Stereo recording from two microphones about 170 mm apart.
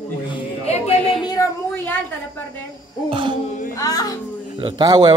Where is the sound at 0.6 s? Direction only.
40° left (ahead or behind).